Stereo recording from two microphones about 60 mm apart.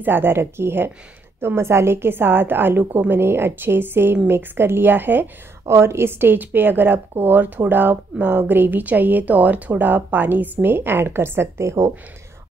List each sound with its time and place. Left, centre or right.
0.0 s a woman's voice: right
5.7 s a woman's voice: right